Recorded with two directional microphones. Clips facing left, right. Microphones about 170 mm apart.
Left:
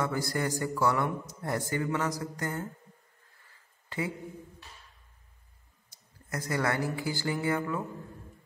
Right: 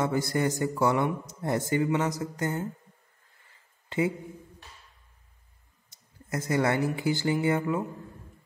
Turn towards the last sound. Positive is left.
turn(degrees=-20)  # may be behind; listen again after turning